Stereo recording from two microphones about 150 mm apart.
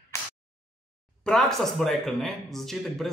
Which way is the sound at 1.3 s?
5° left (ahead or behind).